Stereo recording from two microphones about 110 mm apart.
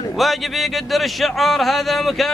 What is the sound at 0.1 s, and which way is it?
A man's voice, centre (ahead or behind).